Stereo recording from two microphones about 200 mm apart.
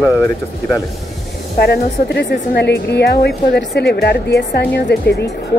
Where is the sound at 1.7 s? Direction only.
55° left (ahead or behind).